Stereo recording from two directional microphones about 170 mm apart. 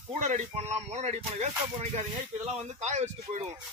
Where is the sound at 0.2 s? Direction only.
45° right (ahead or behind).